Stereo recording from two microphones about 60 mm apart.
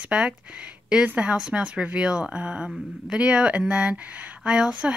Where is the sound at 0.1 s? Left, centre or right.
Centre.